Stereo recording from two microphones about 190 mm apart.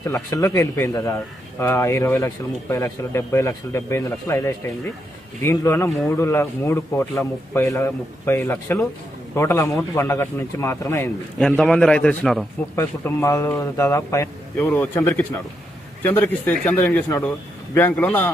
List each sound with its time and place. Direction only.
0.0 s speech: 15° left (ahead or behind)
11.3 s a man's voice: 5° left (ahead or behind)
12.7 s speech: 15° left (ahead or behind)